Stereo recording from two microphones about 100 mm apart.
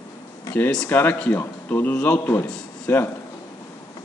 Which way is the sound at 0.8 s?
20° left (ahead or behind).